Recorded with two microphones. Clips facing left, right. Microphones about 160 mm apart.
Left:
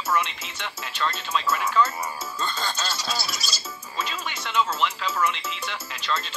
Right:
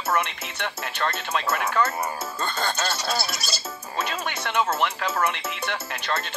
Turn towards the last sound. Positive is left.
turn(degrees=-60)  # may be behind; listen again after turning